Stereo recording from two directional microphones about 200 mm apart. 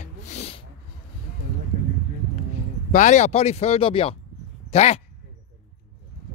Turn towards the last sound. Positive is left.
turn(degrees=30)  # may be behind; listen again after turning